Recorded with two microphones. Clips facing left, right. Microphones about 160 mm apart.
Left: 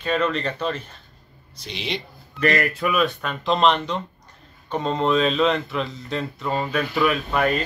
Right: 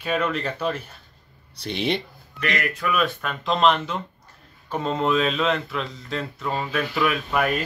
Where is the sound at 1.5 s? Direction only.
55° right (ahead or behind).